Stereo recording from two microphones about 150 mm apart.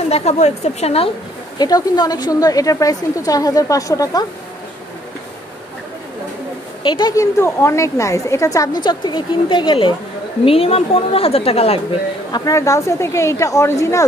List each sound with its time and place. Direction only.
0.1 s a woman's voice: 45° left (ahead or behind)
1.6 s a woman's voice: 25° left (ahead or behind)
6.8 s a woman's voice: 30° left (ahead or behind)
12.3 s a woman's voice: 25° left (ahead or behind)